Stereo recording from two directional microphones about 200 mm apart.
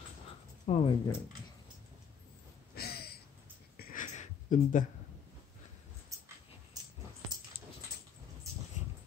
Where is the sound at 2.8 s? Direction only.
50° left (ahead or behind).